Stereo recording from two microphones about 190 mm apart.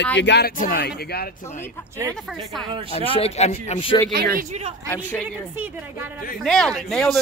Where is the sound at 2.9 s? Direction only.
30° left (ahead or behind).